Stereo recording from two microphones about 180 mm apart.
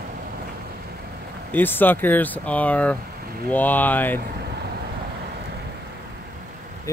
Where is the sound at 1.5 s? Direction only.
10° left (ahead or behind).